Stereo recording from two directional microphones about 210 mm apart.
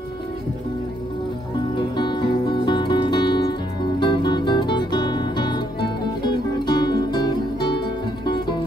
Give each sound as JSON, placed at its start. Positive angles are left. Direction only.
{"t": 1.8, "sound": "music", "side_deg": 20}